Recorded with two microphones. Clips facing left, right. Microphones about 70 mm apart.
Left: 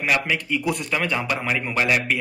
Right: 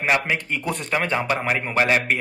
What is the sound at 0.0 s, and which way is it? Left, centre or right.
Speech, right.